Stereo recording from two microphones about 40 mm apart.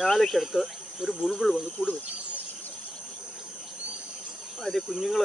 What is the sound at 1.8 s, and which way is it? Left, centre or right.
Speech, left.